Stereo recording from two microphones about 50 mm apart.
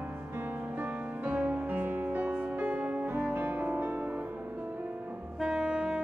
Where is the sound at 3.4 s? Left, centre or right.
Right.